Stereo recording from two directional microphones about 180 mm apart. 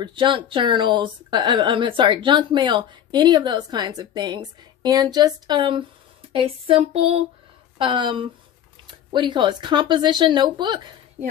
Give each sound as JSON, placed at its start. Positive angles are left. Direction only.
{"t": 0.0, "sound": "a woman's voice", "side_deg": -25}